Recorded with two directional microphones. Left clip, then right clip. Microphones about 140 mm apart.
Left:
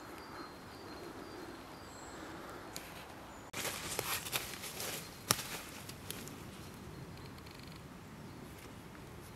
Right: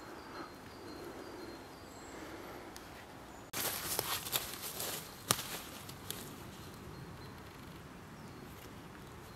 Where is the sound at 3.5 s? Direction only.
15° right (ahead or behind).